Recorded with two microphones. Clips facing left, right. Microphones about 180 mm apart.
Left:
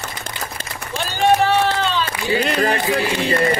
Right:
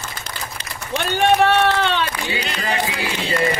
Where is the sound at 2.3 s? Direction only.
50° left (ahead or behind).